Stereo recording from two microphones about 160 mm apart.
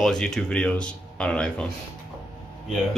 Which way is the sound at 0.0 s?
5° left (ahead or behind).